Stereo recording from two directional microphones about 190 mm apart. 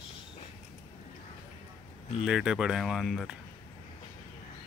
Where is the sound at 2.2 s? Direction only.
5° right (ahead or behind).